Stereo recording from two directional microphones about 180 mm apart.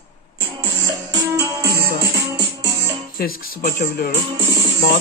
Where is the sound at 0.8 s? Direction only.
20° right (ahead or behind).